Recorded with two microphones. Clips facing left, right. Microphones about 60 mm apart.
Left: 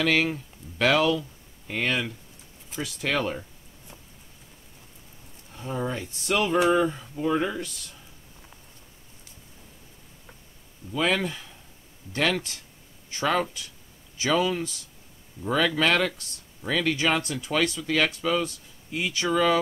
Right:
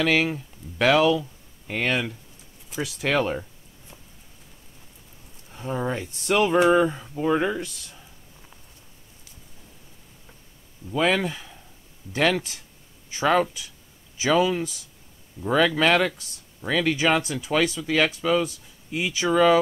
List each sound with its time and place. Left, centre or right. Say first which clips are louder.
0.0 s speech: right 2 dB; centre
5.6 s speech: right 3 dB; centre
11.0 s speech: right 3 dB; centre